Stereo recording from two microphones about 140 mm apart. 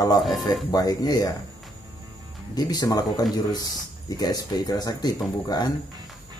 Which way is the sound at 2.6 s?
30° left (ahead or behind).